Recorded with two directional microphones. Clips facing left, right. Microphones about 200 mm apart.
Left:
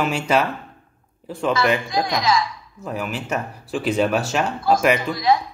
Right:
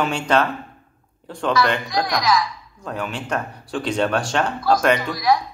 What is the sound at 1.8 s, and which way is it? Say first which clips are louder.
Speech: even; 25° left (ahead or behind).